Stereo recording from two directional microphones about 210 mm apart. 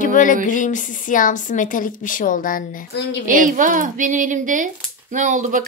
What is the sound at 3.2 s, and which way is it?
Speech, 40° right (ahead or behind).